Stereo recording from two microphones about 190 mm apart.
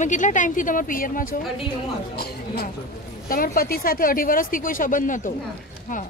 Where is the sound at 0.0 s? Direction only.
40° left (ahead or behind).